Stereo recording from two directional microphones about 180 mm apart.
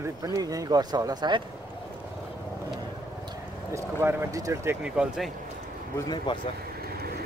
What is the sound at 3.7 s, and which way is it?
Speech, 15° right (ahead or behind).